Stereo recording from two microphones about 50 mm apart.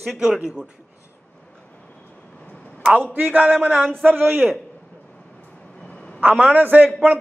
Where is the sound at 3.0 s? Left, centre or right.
Right.